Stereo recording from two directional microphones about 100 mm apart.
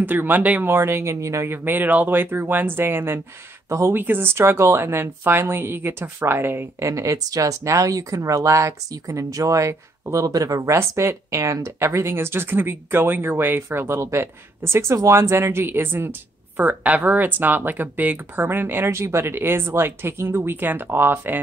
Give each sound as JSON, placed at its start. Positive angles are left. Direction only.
{"t": 0.0, "sound": "speech", "side_deg": -20}